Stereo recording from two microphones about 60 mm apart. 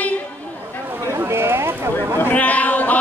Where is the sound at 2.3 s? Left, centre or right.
Left.